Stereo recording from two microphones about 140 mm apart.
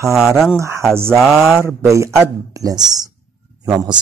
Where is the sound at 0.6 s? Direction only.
20° right (ahead or behind).